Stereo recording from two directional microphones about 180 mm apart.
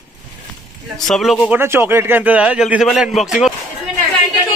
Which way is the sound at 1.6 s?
15° right (ahead or behind).